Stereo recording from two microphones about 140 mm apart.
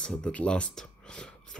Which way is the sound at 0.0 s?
5° left (ahead or behind).